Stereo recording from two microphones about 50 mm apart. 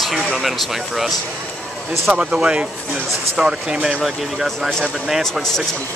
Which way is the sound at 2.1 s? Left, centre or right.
Centre.